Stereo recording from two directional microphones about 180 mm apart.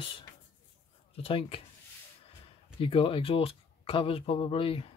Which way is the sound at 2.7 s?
30° left (ahead or behind).